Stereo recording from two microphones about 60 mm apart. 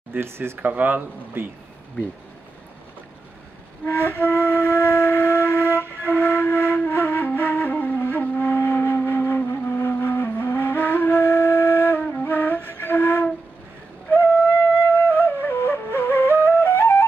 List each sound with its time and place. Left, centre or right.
0.2 s speech: right
0.7 s speech: right
3.8 s flute: left
12.1 s music: left
12.8 s flute: left